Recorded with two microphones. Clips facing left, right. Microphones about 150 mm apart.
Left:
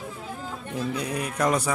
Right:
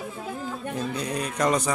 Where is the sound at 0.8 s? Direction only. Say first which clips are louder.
Left 2 dB; 10° left (ahead or behind).